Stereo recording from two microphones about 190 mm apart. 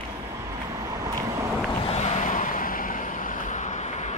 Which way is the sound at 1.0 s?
15° right (ahead or behind).